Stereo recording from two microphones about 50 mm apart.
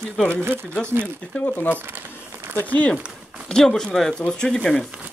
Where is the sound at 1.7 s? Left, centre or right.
Right.